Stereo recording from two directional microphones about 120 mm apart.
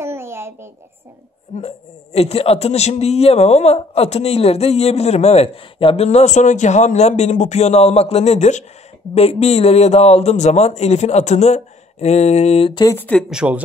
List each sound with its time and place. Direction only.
0.0 s a sound: 20° right (ahead or behind)
1.5 s a sound: 80° left
2.1 s a man's voice: 55° left (ahead or behind)
6.0 s a man's voice: 75° left (ahead or behind)
9.1 s a man's voice: 60° left (ahead or behind)
12.9 s speech: 15° left (ahead or behind)
13.3 s speech: 5° right (ahead or behind)